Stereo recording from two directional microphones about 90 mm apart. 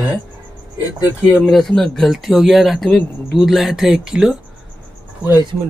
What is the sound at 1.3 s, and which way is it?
Speech, centre (ahead or behind).